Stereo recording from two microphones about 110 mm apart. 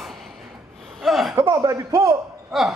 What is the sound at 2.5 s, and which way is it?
Speech, centre (ahead or behind).